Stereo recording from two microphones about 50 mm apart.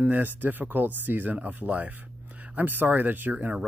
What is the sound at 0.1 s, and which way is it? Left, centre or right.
Speech, right.